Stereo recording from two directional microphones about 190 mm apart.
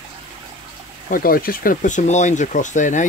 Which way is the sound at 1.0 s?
50° left (ahead or behind).